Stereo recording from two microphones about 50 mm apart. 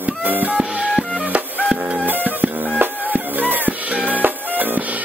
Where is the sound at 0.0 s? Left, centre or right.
Right.